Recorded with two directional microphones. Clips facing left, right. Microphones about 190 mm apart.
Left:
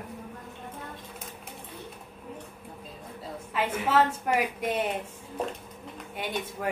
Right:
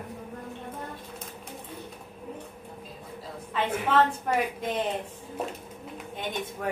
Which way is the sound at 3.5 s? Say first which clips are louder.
Even; 10° left (ahead or behind).